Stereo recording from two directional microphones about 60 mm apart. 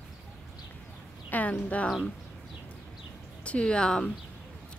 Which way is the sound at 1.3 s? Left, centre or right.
Left.